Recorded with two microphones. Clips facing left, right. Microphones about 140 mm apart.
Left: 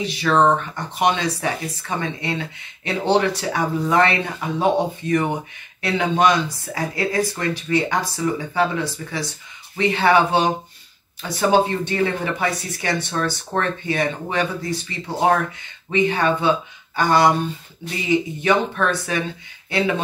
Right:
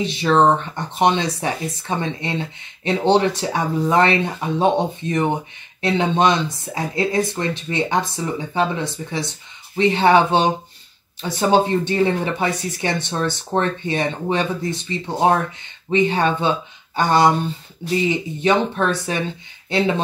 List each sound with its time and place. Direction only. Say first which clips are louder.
0.0 s speech: right 2 dB; 25° right (ahead or behind)
18.4 s speech: right 1 dB; 25° right (ahead or behind)